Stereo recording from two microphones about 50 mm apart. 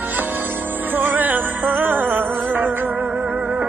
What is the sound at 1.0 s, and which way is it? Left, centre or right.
Music, right.